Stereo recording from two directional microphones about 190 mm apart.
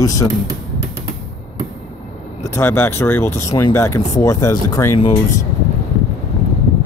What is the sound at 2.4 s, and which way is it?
Speech, 15° left (ahead or behind).